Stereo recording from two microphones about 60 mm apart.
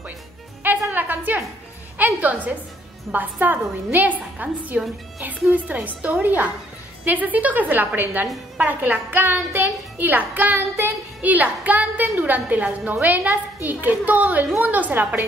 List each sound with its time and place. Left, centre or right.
0.7 s music: right
2.1 s a woman's voice: right